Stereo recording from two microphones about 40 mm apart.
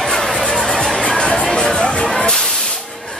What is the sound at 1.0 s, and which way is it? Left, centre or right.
Music, left.